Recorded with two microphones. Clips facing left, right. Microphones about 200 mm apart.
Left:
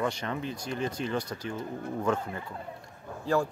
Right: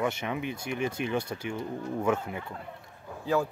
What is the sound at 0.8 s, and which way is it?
Speech, 25° right (ahead or behind).